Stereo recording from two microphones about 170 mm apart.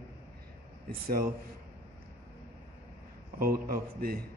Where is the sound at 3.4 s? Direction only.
60° right (ahead or behind).